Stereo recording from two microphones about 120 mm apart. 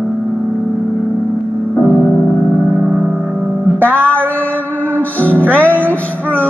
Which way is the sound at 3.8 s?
15° right (ahead or behind).